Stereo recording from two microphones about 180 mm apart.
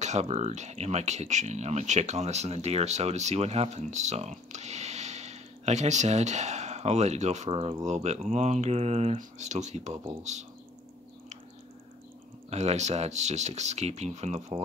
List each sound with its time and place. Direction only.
0.0 s speech: 40° right (ahead or behind)
12.4 s speech: 40° right (ahead or behind)